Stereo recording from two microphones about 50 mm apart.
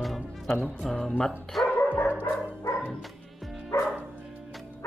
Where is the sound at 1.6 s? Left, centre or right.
Left.